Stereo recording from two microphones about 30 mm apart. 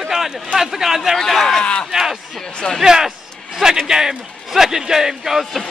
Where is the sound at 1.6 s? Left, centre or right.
Left.